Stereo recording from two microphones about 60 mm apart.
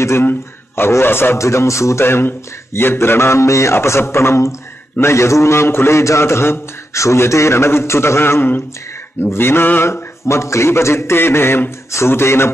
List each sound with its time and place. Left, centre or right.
0.0 s a man's voice: left